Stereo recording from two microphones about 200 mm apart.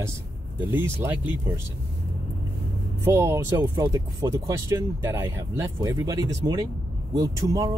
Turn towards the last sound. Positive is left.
turn(degrees=-15)  # may be behind; listen again after turning